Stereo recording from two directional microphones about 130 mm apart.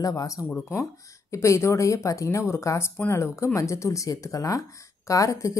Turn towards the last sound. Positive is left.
turn(degrees=25)  # may be behind; listen again after turning